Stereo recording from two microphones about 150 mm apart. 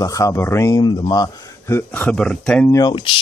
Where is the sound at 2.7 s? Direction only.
30° left (ahead or behind).